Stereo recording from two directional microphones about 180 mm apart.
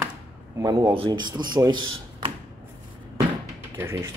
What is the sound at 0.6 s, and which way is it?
Speech, 20° right (ahead or behind).